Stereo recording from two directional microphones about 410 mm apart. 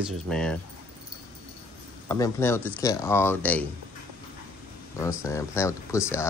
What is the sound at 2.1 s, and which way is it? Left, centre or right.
A man's voice, centre.